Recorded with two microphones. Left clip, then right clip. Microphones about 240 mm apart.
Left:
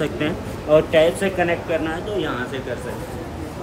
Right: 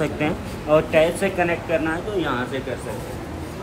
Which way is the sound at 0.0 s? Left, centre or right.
Centre.